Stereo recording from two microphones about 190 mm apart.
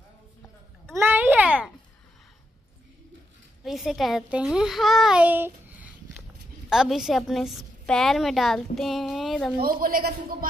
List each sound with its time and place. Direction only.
0.9 s a sound: 10° right (ahead or behind)
3.6 s a woman's voice: centre (ahead or behind)
9.6 s a man's voice: 50° right (ahead or behind)